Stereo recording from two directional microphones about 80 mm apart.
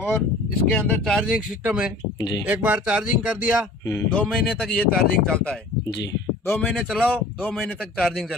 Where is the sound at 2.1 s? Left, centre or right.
Left.